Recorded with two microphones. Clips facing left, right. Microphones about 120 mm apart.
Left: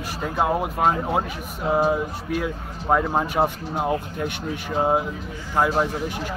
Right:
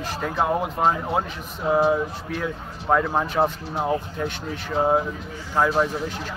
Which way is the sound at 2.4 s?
15° left (ahead or behind).